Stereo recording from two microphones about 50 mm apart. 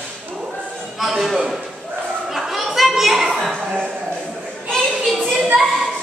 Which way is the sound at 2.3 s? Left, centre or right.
Centre.